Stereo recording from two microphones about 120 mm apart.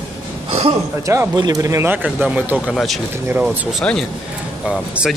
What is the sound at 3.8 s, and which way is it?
Speech, 5° left (ahead or behind).